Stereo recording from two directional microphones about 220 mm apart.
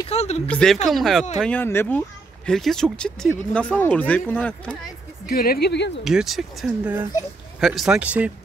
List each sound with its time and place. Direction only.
0.1 s a sound: 30° left (ahead or behind)
0.5 s speech: 5° left (ahead or behind)
5.3 s speech: 45° left (ahead or behind)
6.0 s speech: centre (ahead or behind)